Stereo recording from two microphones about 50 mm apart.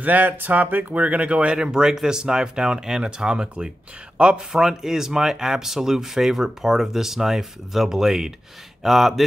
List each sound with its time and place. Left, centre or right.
0.0 s speech: right; by 9.2 s centre